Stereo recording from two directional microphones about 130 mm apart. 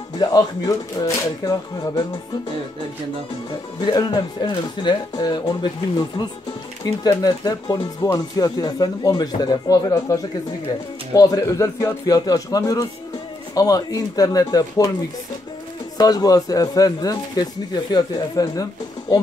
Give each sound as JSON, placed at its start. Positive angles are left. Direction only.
{"t": 0.2, "sound": "speech", "side_deg": 30}
{"t": 3.8, "sound": "speech", "side_deg": 30}
{"t": 6.8, "sound": "speech", "side_deg": 30}
{"t": 16.0, "sound": "speech", "side_deg": 30}